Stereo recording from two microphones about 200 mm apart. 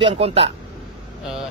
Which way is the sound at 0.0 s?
30° right (ahead or behind).